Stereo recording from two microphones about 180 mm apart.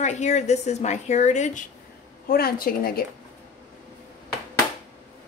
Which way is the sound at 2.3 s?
55° left (ahead or behind).